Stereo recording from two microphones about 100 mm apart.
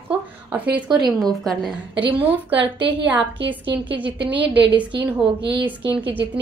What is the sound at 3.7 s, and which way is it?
A woman's voice, 15° right (ahead or behind).